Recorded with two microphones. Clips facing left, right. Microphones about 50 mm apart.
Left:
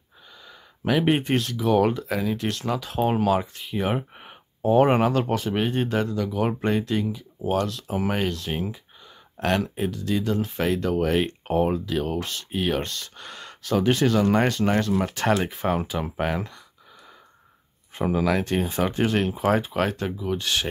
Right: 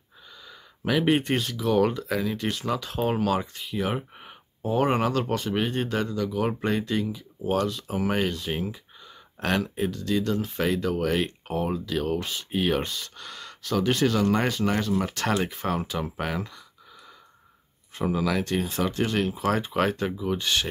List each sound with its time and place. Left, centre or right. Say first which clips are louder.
0.5 s a sound: left 2 dB; centre
1.0 s speech: right 2 dB; centre
1.3 s speech: left 2 dB; centre
3.7 s speech: left 3 dB; centre
11.4 s speech: left 6 dB; left
11.7 s speech: left 1 dB; centre
13.2 s a sound: left 1 dB; centre
13.8 s speech: left 2 dB; centre
15.4 s speech: left 3 dB; centre
17.9 s speech: left 3 dB; left
19.5 s speech: left 1 dB; centre